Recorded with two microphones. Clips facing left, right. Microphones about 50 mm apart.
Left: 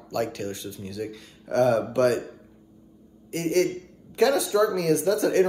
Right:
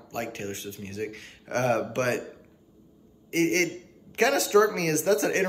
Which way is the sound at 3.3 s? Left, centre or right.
Right.